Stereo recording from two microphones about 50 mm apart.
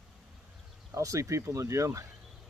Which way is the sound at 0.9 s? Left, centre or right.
Right.